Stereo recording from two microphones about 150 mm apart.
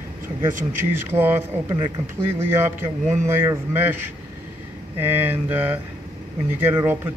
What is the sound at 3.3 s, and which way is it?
Speech, 15° right (ahead or behind).